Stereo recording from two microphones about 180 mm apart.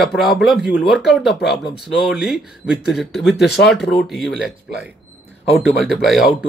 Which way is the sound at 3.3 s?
65° left (ahead or behind).